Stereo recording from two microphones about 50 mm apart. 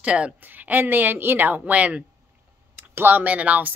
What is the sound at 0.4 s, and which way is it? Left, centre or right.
A woman's voice, right.